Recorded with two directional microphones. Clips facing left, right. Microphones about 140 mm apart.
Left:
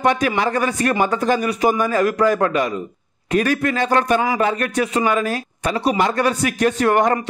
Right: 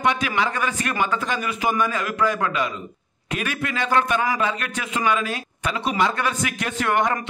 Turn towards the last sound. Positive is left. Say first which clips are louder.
# left 6 dB
turn(degrees=40)  # may be behind; listen again after turning